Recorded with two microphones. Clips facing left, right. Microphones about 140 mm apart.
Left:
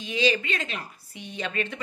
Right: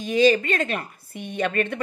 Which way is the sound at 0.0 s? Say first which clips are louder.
Right 7 dB; 45° right (ahead or behind).